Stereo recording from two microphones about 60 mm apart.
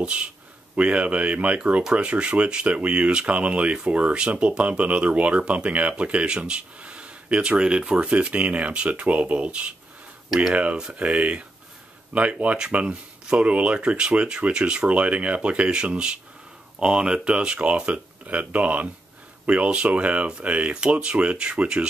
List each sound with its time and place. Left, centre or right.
0.0 s speech: centre